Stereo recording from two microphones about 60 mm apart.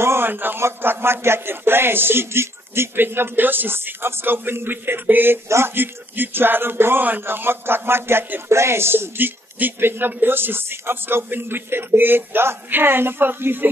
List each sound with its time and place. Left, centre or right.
0.0 s speech: right